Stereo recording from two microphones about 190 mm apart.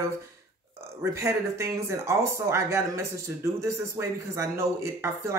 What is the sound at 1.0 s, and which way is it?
Speech, 15° right (ahead or behind).